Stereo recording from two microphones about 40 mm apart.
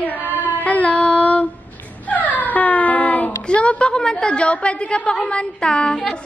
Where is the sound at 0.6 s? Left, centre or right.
Left.